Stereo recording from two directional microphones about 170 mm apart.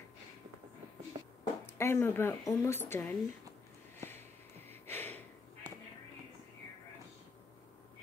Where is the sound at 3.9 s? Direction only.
15° left (ahead or behind).